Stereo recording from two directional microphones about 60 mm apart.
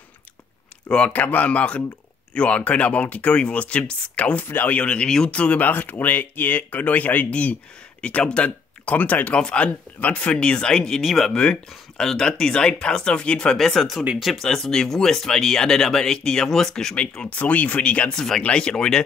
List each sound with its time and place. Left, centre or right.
0.8 s speech: centre
1.1 s speech: left; by 16.9 s centre
16.9 s speech: centre